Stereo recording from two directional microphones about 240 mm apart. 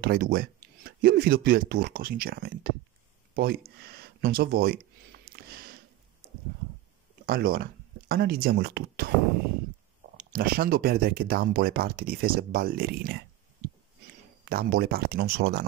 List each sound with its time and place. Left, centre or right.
0.0 s speech: right
5.2 s a sound: right
7.2 s speech: right
10.1 s speech: right
14.4 s speech: right